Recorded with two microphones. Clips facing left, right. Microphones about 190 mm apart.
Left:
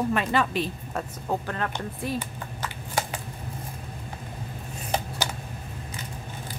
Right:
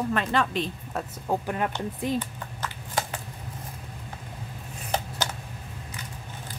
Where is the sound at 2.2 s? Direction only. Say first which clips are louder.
Even; 10° left (ahead or behind).